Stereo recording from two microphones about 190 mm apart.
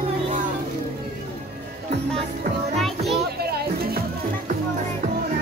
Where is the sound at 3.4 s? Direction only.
55° right (ahead or behind).